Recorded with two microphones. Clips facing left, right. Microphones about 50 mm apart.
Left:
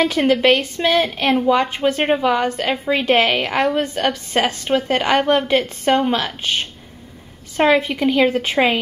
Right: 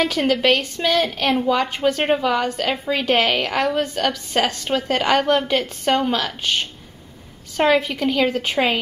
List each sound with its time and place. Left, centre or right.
0.0 s a woman's voice: centre